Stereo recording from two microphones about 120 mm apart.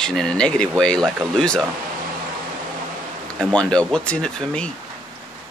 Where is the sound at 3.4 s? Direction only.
5° left (ahead or behind).